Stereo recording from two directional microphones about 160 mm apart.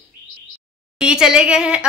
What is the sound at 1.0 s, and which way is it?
Speech, 5° right (ahead or behind).